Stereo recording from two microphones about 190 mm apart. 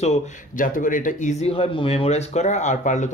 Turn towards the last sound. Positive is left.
turn(degrees=40)  # may be behind; listen again after turning